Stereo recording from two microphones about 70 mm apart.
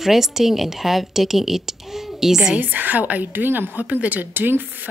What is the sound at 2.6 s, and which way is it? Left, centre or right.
A woman's voice, right.